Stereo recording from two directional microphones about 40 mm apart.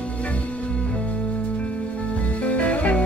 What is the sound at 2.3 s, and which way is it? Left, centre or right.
Music, left.